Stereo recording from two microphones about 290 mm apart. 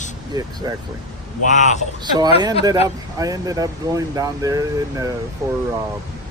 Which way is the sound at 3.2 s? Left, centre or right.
Centre.